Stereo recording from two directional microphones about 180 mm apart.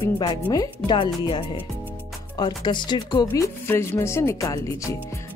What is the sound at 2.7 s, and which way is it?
Speech, 25° left (ahead or behind).